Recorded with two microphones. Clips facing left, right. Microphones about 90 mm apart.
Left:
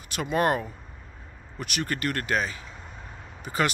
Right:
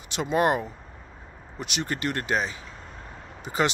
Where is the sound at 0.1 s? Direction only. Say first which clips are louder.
Right 1 dB; 20° right (ahead or behind).